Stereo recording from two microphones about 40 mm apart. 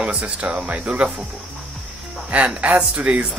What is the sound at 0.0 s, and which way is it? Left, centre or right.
Speech, right.